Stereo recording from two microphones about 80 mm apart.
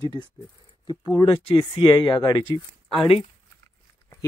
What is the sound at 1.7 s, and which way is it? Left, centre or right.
Speech, left.